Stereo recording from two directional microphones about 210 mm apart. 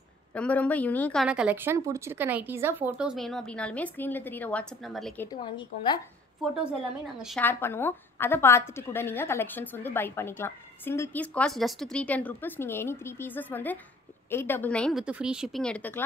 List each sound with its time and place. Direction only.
0.3 s a woman's voice: 5° left (ahead or behind)
1.2 s speech: 5° right (ahead or behind)
5.4 s a woman's voice: 25° left (ahead or behind)
7.2 s speech: centre (ahead or behind)
7.4 s a woman's voice: 10° left (ahead or behind)